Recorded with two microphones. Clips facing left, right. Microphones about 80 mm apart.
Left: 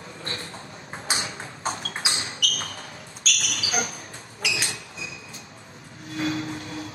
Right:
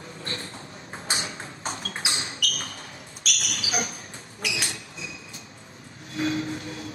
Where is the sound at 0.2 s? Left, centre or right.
Left.